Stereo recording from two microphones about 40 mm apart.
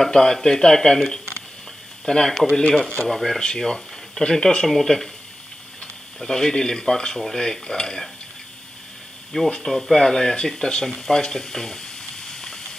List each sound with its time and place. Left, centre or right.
0.0 s cutlery: centre
2.0 s cutlery: centre
3.0 s speech: centre
3.3 s speech: centre
4.6 s cutlery: centre
6.1 s cutlery: centre
9.3 s cutlery: centre
11.0 s frying: centre